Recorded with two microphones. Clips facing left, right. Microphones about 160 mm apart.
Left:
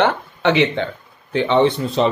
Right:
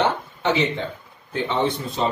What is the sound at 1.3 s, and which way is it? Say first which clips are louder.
Speech: left 7 dB; 85° left.